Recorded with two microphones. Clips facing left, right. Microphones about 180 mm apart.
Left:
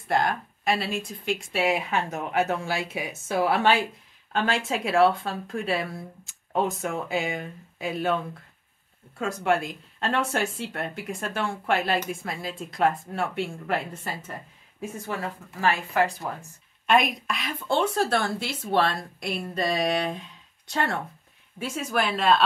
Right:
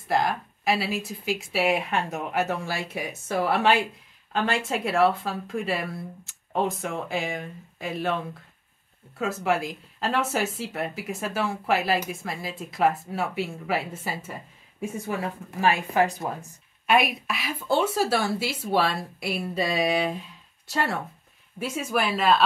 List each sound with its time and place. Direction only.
0.1 s a woman's voice: centre (ahead or behind); by 16.4 s 20° right (ahead or behind)
16.8 s a woman's voice: 5° right (ahead or behind)